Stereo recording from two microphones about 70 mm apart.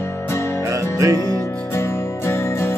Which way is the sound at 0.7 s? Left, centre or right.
Right.